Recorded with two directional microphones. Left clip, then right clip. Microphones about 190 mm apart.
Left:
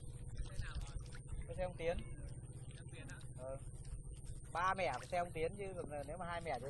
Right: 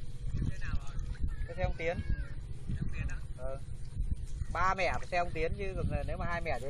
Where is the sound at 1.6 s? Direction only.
40° right (ahead or behind).